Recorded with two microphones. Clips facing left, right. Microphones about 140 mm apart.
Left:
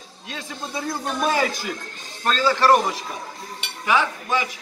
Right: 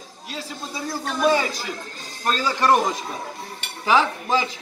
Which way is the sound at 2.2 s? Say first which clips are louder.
Left 2 dB; 15° right (ahead or behind).